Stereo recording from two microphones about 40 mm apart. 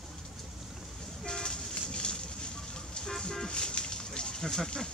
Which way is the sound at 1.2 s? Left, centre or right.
Centre.